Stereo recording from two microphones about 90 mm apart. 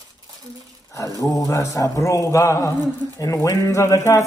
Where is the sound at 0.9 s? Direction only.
40° left (ahead or behind).